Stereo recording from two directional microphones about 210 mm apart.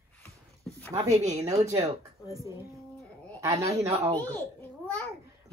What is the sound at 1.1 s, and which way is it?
Speech, 30° right (ahead or behind).